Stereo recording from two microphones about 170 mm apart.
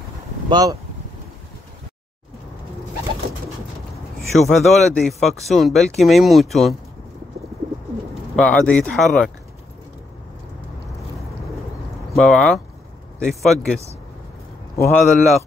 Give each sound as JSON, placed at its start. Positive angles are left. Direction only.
{"t": 0.5, "sound": "speech", "side_deg": -25}
{"t": 4.4, "sound": "speech", "side_deg": 0}
{"t": 8.1, "sound": "speech", "side_deg": 5}
{"t": 12.2, "sound": "speech", "side_deg": 5}
{"t": 14.8, "sound": "speech", "side_deg": 0}